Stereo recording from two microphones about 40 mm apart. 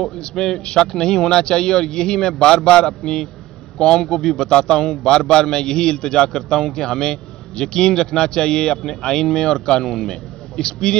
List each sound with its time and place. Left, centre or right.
0.2 s a man's voice: centre